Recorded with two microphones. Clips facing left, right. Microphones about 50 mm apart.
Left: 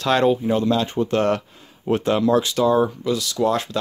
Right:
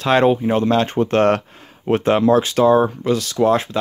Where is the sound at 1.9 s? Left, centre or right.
Right.